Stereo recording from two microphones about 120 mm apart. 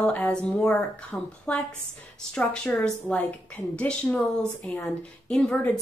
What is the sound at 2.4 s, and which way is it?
A woman's voice, 5° left (ahead or behind).